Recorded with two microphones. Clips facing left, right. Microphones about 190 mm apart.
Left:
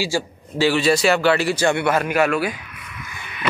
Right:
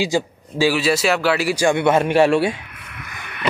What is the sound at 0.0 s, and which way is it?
Speech, 15° right (ahead or behind).